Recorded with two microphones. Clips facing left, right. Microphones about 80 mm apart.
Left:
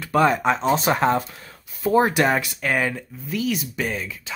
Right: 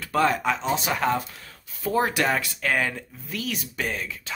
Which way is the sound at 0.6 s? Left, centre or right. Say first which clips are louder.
Left 6 dB; left.